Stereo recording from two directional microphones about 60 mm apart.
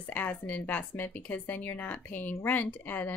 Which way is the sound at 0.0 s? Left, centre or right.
Left.